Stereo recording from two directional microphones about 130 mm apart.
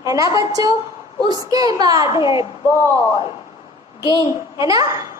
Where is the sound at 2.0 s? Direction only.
40° left (ahead or behind).